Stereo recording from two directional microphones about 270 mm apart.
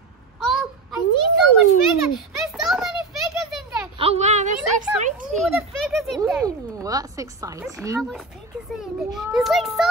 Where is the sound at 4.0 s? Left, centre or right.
Right.